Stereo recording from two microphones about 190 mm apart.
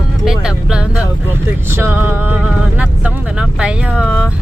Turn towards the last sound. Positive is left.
turn(degrees=0)  # may be behind; listen again after turning